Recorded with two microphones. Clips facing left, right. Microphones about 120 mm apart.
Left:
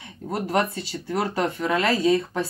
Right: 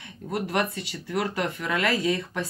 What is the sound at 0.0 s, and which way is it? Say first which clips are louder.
Speech: left 1 dB; 30° left (ahead or behind).